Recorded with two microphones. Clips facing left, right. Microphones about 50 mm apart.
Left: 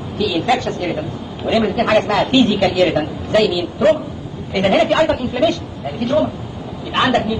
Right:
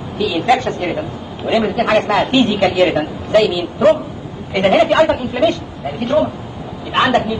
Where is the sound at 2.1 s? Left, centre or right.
Centre.